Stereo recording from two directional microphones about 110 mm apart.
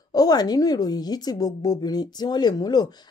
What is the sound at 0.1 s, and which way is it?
A woman's voice, 35° left (ahead or behind).